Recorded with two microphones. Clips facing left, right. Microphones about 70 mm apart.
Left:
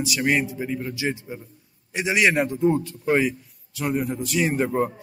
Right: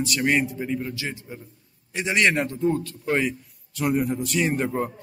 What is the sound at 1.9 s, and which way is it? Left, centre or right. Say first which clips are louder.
A man's voice: left 1 dB; centre.